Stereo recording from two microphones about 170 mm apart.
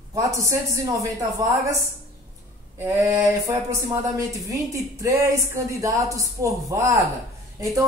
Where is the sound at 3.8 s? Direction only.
20° right (ahead or behind).